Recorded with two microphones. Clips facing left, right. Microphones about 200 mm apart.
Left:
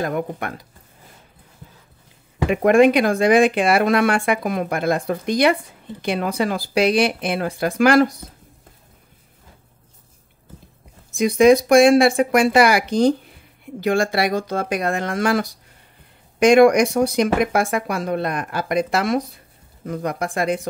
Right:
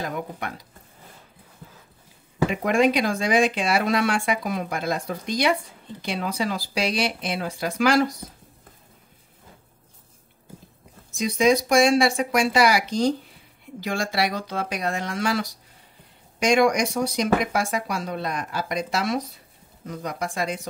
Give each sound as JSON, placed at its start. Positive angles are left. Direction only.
{"t": 0.0, "sound": "speech", "side_deg": 55}
{"t": 2.5, "sound": "speech", "side_deg": 55}
{"t": 11.1, "sound": "speech", "side_deg": 55}